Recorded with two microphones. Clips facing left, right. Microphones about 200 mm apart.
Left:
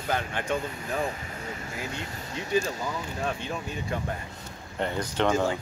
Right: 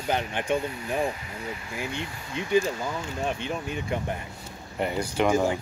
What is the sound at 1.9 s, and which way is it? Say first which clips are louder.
Speech: right 2 dB; 40° left (ahead or behind).